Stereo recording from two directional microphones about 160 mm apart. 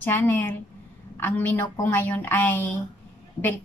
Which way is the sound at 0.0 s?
10° left (ahead or behind).